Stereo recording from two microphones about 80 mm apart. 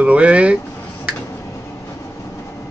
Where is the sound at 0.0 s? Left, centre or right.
Centre.